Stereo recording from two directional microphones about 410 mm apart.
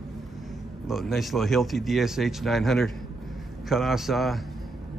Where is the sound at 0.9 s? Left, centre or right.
Centre.